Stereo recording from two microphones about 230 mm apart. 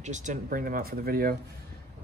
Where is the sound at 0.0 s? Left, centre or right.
Right.